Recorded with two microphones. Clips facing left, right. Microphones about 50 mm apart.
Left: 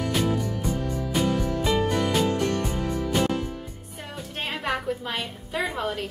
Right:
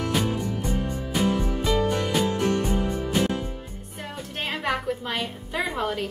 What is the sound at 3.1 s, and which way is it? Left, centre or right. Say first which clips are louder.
Music: left 1 dB; centre.